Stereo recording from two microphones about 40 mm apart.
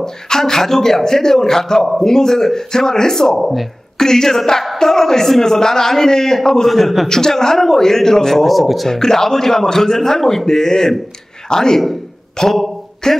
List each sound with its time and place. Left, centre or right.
0.0 s a man's voice: centre
3.3 s a man's voice: centre
4.0 s a man's voice: centre
6.7 s a man's voice: centre
7.1 s a man's voice: centre
8.8 s a man's voice: centre